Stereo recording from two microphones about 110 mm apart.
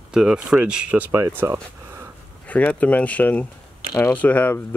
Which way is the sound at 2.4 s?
15° left (ahead or behind).